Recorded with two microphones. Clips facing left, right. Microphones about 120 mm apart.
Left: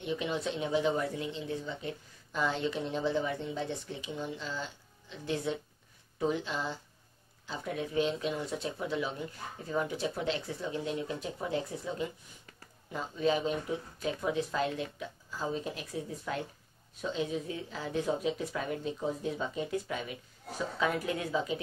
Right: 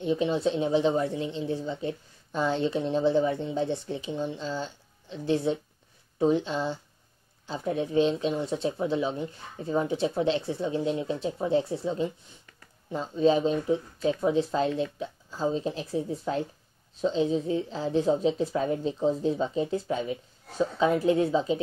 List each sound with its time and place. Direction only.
0.0 s speech: 30° right (ahead or behind)